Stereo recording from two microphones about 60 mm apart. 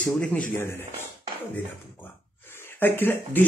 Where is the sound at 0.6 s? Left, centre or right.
Left.